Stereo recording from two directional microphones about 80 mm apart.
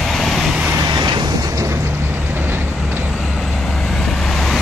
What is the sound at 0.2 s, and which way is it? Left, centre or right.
Vehicle, centre.